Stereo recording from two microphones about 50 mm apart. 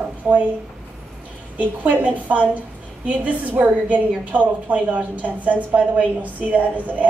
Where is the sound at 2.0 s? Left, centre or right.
Right.